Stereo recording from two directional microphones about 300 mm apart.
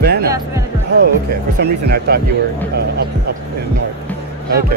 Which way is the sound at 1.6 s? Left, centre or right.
Right.